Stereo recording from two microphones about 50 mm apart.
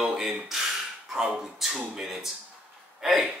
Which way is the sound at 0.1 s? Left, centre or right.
Centre.